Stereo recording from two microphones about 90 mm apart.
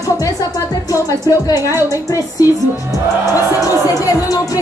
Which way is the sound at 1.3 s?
45° left (ahead or behind).